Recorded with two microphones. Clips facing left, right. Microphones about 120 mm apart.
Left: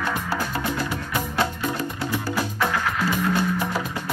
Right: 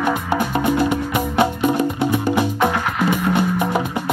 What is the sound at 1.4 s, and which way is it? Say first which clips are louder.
Music: right 9 dB; 20° right (ahead or behind).